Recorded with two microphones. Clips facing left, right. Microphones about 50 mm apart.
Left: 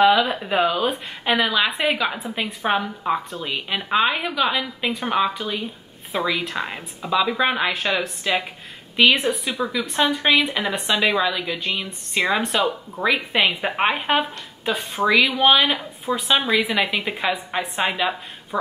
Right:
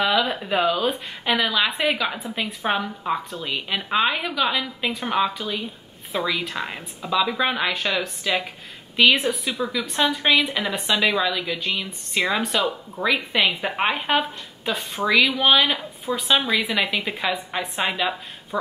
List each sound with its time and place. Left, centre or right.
0.3 s a woman's voice: centre
14.8 s a woman's voice: centre